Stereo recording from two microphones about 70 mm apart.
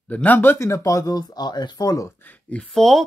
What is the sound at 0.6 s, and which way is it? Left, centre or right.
Speech, left.